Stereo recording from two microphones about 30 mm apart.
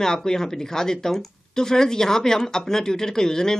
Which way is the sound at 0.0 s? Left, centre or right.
Centre.